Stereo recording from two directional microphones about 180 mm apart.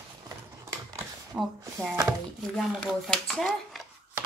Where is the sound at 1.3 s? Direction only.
5° right (ahead or behind).